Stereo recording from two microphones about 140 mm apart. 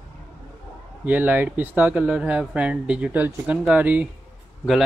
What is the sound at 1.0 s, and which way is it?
A man's voice, 10° right (ahead or behind).